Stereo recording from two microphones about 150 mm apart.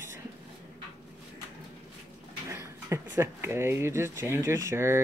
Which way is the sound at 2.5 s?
20° right (ahead or behind).